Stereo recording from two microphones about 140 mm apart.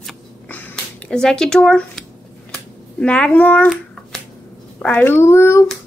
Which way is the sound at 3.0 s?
10° left (ahead or behind).